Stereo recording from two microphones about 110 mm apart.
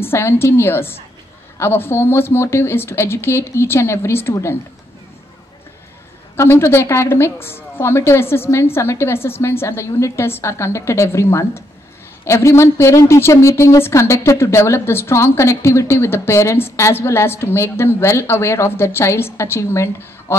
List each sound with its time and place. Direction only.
0.0 s a woman's voice: 20° left (ahead or behind)
6.3 s a woman's voice: 25° left (ahead or behind)